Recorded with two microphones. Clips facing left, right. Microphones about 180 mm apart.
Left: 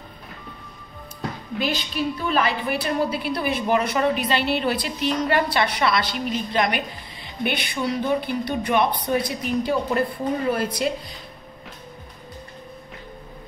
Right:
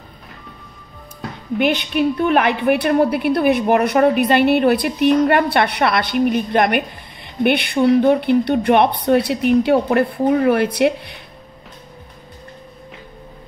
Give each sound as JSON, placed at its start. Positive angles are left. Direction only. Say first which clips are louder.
{"t": 1.6, "sound": "a woman's voice", "louder": "right 8 dB", "side_deg": -65}